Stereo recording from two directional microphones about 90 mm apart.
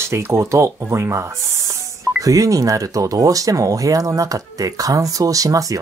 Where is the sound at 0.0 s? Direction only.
30° right (ahead or behind).